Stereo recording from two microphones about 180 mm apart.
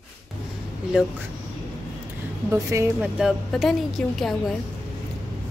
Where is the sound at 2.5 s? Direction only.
15° right (ahead or behind).